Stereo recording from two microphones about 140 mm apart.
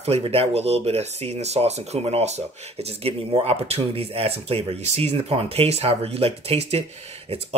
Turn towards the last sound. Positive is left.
turn(degrees=-50)  # may be behind; listen again after turning